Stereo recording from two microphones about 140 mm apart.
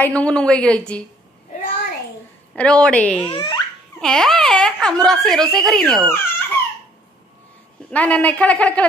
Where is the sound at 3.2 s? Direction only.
35° left (ahead or behind).